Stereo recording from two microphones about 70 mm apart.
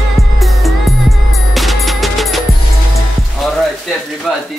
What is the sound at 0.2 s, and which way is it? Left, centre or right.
Music, centre.